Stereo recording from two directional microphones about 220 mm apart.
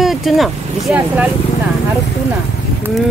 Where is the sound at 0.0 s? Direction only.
Centre (ahead or behind).